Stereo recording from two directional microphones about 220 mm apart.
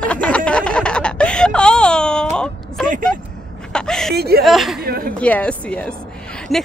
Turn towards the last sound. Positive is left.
turn(degrees=0)  # may be behind; listen again after turning